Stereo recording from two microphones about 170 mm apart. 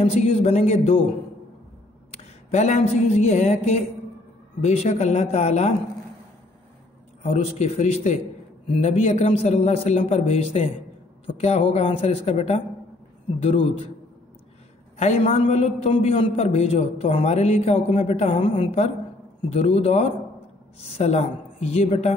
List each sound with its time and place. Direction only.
0.0 s a man's voice: 35° left (ahead or behind)
2.5 s a man's voice: 40° left (ahead or behind)
7.5 s a man's voice: 40° left (ahead or behind)
15.0 s a man's voice: 40° left (ahead or behind)